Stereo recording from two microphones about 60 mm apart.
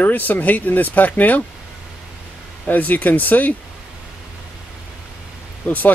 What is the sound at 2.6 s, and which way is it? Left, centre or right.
Speech, left.